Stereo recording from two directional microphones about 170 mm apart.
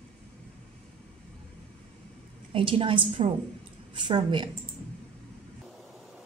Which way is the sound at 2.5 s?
30° right (ahead or behind).